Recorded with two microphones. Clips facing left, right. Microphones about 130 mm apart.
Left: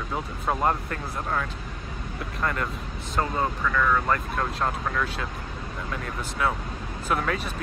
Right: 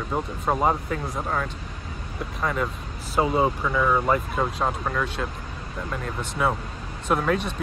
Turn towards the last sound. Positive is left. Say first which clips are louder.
# right 4 dB
turn(degrees=0)  # may be behind; listen again after turning